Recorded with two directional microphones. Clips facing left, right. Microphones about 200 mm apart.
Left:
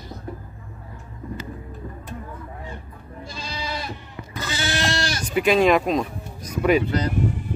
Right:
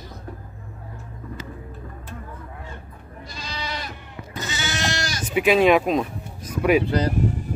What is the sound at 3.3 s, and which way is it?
Goat, 30° left (ahead or behind).